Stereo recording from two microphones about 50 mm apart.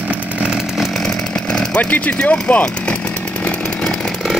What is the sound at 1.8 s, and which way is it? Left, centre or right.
Speech, left.